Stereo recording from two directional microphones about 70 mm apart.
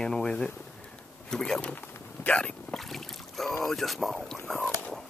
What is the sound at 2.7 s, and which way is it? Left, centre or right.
Boat, centre.